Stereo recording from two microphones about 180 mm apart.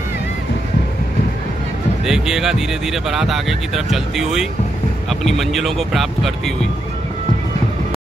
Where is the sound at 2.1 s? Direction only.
5° right (ahead or behind).